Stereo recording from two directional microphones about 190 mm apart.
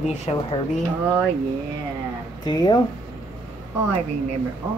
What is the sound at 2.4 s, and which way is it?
Speech, 20° left (ahead or behind).